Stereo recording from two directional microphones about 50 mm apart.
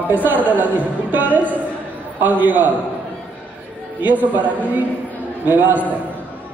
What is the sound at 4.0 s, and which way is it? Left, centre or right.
A man's voice, right.